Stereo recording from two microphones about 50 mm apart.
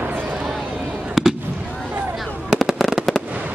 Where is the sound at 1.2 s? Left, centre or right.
Centre.